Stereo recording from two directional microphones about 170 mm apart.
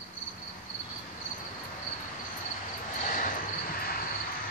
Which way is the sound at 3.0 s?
50° left (ahead or behind).